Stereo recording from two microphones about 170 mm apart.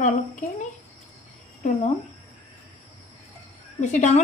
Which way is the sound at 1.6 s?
40° left (ahead or behind).